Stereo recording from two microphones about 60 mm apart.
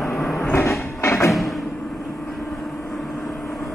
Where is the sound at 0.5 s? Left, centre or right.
Left.